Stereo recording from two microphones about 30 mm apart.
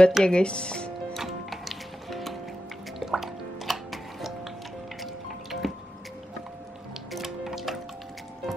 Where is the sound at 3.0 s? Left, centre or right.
Centre.